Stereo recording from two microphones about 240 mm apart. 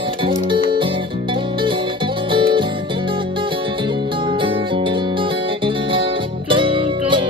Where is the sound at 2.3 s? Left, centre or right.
Right.